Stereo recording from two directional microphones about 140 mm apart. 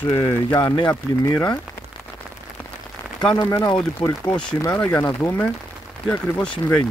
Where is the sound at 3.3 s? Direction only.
25° left (ahead or behind).